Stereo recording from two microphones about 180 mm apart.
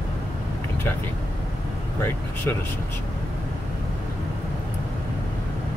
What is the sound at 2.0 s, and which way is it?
Speech, 10° left (ahead or behind).